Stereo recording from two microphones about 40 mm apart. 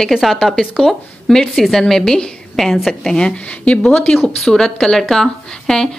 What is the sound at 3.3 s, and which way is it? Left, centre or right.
Speech, left.